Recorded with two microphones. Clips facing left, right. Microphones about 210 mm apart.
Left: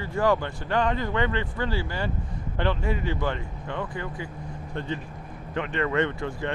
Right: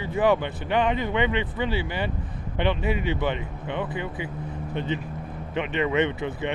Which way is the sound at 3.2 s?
20° right (ahead or behind).